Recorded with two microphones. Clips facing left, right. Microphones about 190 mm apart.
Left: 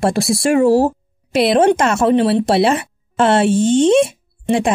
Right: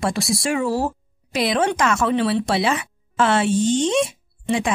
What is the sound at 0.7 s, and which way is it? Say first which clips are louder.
Speech: left 9 dB; 25° left (ahead or behind).